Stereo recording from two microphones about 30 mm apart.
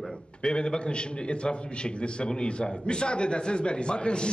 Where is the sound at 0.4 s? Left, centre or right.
Left.